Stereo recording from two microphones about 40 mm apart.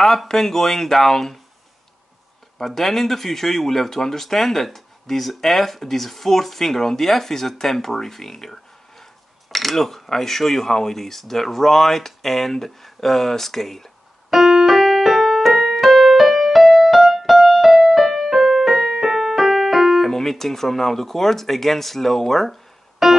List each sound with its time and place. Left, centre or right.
0.0 s speech: centre
2.6 s speech: centre
9.5 s mechanisms: centre
10.0 s speech: centre
14.3 s keyboard: centre
20.1 s speech: centre